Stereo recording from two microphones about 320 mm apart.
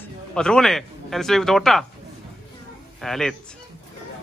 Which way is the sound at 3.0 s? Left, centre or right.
Centre.